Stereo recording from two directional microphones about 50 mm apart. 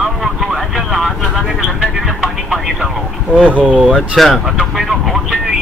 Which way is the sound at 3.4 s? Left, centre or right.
Right.